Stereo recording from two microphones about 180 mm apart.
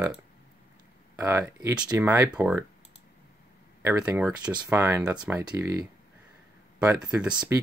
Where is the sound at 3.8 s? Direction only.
10° right (ahead or behind).